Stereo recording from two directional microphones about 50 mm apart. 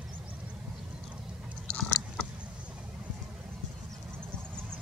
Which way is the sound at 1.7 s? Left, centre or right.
Centre.